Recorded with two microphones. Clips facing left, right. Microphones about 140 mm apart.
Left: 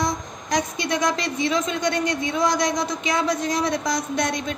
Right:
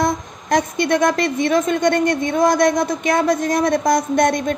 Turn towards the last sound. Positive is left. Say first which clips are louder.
# right 8 dB
turn(degrees=-50)  # may be behind; listen again after turning